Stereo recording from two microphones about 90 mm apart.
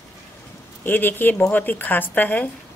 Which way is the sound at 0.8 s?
20° left (ahead or behind).